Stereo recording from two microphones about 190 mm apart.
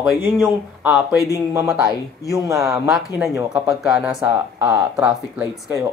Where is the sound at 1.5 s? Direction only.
15° right (ahead or behind).